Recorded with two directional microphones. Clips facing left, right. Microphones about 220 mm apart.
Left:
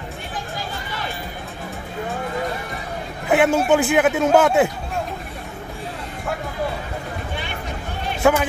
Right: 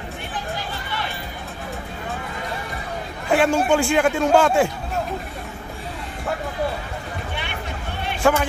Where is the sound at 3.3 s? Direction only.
5° left (ahead or behind).